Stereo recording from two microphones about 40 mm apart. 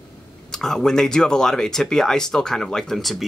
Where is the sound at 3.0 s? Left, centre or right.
Centre.